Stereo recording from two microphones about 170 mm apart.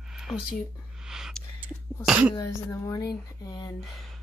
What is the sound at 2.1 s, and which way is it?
Speech, 5° right (ahead or behind).